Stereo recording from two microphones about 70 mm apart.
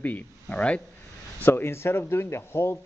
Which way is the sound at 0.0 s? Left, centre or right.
Left.